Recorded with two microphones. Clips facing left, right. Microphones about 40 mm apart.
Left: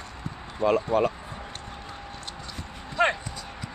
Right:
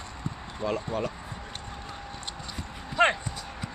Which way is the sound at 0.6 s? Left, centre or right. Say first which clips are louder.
Left 8 dB; left.